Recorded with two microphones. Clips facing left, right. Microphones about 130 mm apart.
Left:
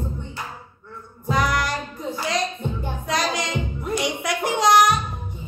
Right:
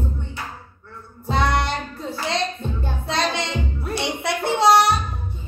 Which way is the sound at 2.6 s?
15° left (ahead or behind).